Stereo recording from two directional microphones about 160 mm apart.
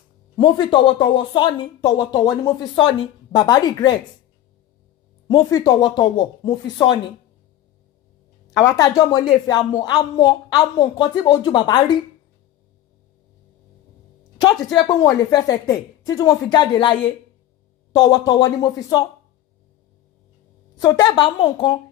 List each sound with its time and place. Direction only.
0.4 s speech: 30° left (ahead or behind)
5.3 s speech: 25° left (ahead or behind)
8.5 s speech: 25° left (ahead or behind)
14.4 s speech: 25° left (ahead or behind)
17.9 s speech: 25° left (ahead or behind)
20.8 s speech: 30° left (ahead or behind)